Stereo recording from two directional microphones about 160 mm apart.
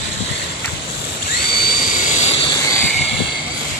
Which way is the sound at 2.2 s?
40° left (ahead or behind).